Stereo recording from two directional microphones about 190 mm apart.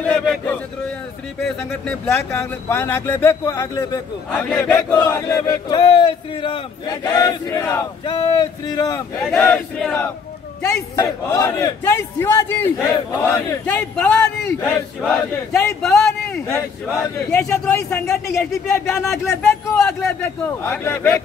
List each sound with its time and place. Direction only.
0.0 s speech: 5° left (ahead or behind)
1.9 s speech: 10° left (ahead or behind)
4.3 s battle cry: 5° left (ahead or behind)
9.3 s speech: 10° left (ahead or behind)
12.8 s battle cry: 20° left (ahead or behind)
13.5 s speech: 10° left (ahead or behind)